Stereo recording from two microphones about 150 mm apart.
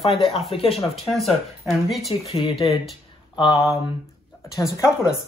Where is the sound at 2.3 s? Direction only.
40° left (ahead or behind).